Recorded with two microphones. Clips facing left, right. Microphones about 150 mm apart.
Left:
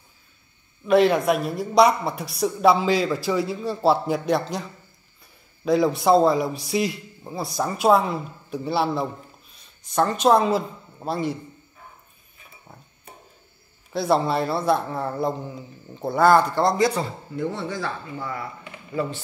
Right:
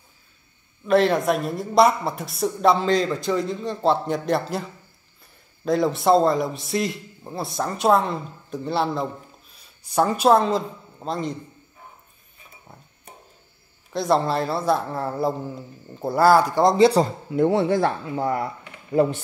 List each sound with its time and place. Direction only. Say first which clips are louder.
0.8 s a woman's voice: left 1 dB; centre (ahead or behind)
5.7 s a woman's voice: even; centre (ahead or behind)
9.8 s a woman's voice: right 1 dB; 10° right (ahead or behind); by 11.3 s 5° left (ahead or behind)
13.9 s a woman's voice: even; 5° left (ahead or behind); by 16.7 s 15° right (ahead or behind)
16.7 s speech: right 6 dB; 25° right (ahead or behind)
17.3 s speech: right 9 dB; 65° right (ahead or behind)